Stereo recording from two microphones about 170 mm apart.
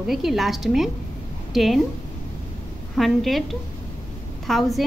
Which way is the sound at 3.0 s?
Centre (ahead or behind).